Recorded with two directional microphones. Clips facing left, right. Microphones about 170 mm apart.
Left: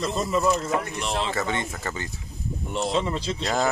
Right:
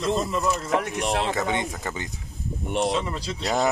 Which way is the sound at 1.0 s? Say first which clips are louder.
Right 3 dB; 60° right (ahead or behind).